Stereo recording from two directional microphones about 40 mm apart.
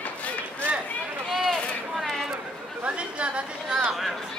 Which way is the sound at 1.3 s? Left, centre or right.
Centre.